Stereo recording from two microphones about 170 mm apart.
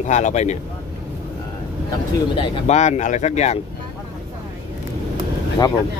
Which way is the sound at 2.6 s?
40° left (ahead or behind).